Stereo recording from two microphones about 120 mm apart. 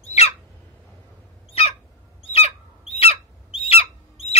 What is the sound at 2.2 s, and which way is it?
Bird, 55° left (ahead or behind).